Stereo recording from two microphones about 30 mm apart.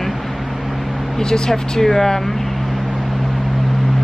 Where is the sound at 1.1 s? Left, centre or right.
Left.